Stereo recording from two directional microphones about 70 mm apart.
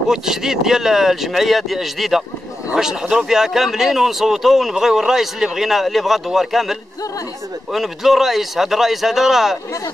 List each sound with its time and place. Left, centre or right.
0.1 s speech: centre